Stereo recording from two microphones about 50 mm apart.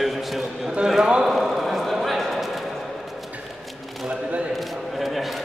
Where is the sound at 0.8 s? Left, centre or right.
Centre.